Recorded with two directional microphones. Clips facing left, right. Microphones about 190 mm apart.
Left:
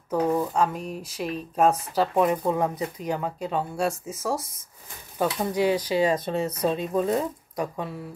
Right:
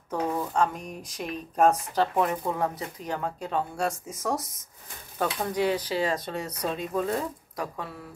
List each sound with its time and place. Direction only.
0.1 s speech: 10° left (ahead or behind)
2.1 s speech: 15° left (ahead or behind)